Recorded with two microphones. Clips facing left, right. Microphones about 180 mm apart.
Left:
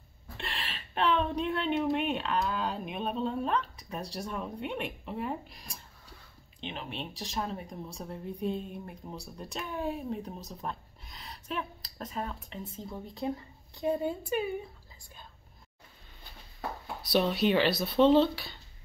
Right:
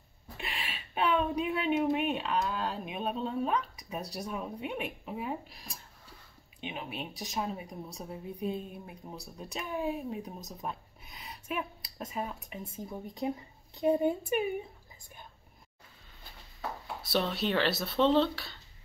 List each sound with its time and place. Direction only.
0.4 s a woman's voice: 10° right (ahead or behind)
17.2 s speech: 5° left (ahead or behind)
17.9 s speech: 10° left (ahead or behind)